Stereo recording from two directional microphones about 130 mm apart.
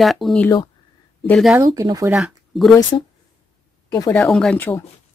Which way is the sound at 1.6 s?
30° right (ahead or behind).